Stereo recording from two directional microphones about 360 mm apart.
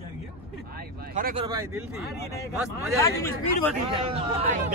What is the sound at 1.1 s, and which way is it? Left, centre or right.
Speech, centre.